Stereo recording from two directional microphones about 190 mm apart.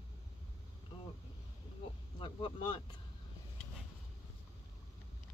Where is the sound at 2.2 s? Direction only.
25° left (ahead or behind).